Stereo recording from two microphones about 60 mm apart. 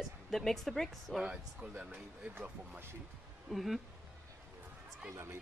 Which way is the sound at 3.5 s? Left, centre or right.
Centre.